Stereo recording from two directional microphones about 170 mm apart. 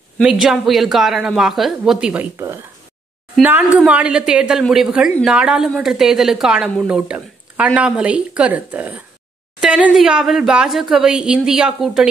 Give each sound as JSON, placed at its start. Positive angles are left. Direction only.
{"t": 0.2, "sound": "speech", "side_deg": -5}
{"t": 2.3, "sound": "speech", "side_deg": -15}